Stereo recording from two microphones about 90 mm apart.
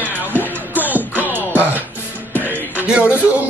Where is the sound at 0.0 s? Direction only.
20° right (ahead or behind).